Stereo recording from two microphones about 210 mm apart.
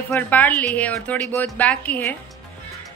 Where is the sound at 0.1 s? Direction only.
10° left (ahead or behind).